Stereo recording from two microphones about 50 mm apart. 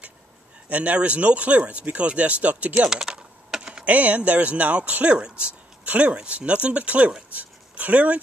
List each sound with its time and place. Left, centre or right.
0.7 s speech: right
2.9 s typing: centre
3.8 s speech: right
7.3 s a sound: right